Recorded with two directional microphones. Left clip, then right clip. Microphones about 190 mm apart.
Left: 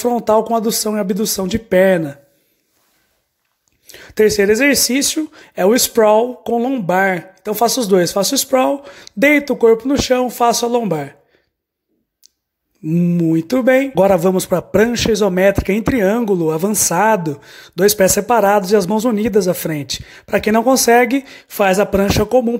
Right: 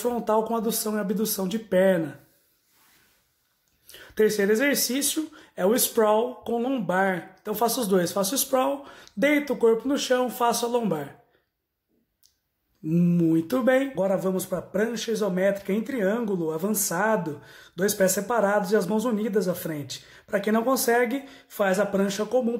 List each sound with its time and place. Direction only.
0.0 s speech: 40° left (ahead or behind)
3.8 s speech: 40° left (ahead or behind)
12.8 s speech: 30° left (ahead or behind)